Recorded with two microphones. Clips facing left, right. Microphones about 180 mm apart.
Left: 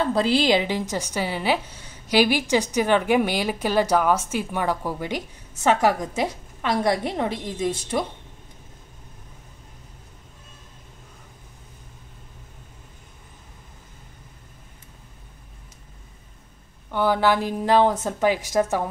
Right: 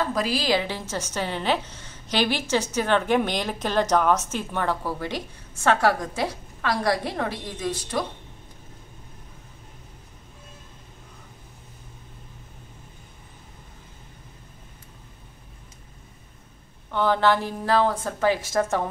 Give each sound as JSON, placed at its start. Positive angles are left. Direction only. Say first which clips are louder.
{"t": 0.0, "sound": "a woman's voice", "louder": "left 5 dB", "side_deg": 25}
{"t": 16.9, "sound": "speech", "louder": "left 1 dB", "side_deg": 10}